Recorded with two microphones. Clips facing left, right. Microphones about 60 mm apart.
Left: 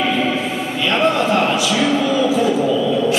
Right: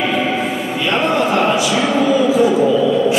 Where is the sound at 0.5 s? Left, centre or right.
Centre.